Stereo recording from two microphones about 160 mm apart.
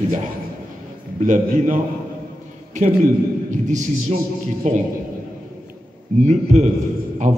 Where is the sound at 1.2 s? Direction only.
50° right (ahead or behind).